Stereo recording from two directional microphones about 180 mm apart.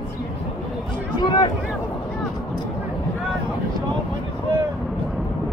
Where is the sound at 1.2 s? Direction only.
25° left (ahead or behind).